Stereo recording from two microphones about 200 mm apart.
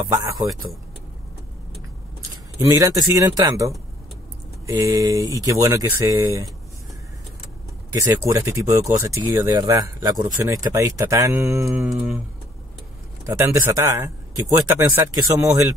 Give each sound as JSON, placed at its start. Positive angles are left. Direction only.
{"t": 0.1, "sound": "speech", "side_deg": -20}
{"t": 2.3, "sound": "speech", "side_deg": -20}
{"t": 7.9, "sound": "speech", "side_deg": -15}
{"t": 11.6, "sound": "music", "side_deg": 0}
{"t": 13.2, "sound": "speech", "side_deg": -15}